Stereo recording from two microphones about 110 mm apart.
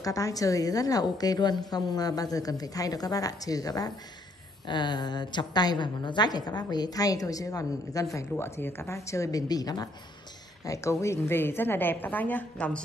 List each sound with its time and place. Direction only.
0.0 s a woman's voice: 30° left (ahead or behind); by 12.8 s 10° left (ahead or behind)